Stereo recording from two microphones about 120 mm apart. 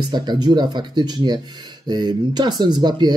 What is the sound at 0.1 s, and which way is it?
Speech, 35° right (ahead or behind).